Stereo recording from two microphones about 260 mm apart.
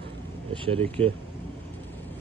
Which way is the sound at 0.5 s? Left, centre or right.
Centre.